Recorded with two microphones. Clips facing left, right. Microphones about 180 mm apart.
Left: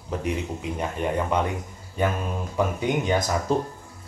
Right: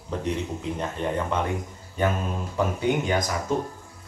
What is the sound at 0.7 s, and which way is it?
Speech, 10° left (ahead or behind).